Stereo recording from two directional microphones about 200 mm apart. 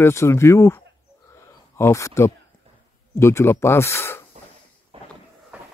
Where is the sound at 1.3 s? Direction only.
15° left (ahead or behind).